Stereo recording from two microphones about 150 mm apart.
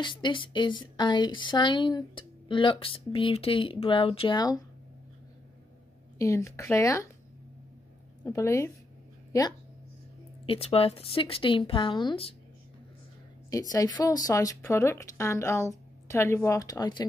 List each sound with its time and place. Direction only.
0.0 s speech: 30° left (ahead or behind)
6.1 s speech: 20° left (ahead or behind)
8.3 s speech: 20° left (ahead or behind)
10.4 s speech: 40° left (ahead or behind)
13.5 s speech: 25° left (ahead or behind)